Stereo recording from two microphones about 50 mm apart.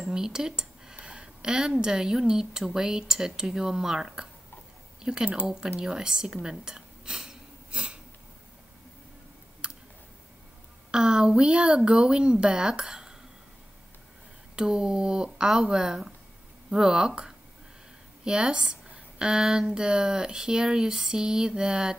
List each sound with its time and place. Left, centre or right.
0.0 s speech: centre
5.8 s a sound: centre
9.6 s tick: centre
10.9 s speech: centre
14.5 s speech: centre